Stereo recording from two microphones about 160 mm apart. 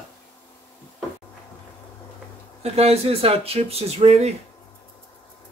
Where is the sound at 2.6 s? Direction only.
40° right (ahead or behind).